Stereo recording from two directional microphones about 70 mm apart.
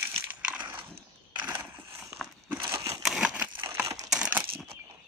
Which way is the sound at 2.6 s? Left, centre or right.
Right.